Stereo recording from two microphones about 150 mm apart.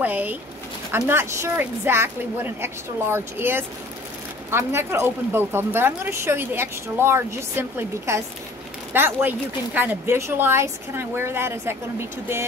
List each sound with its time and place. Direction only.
0.0 s a woman's voice: 10° right (ahead or behind)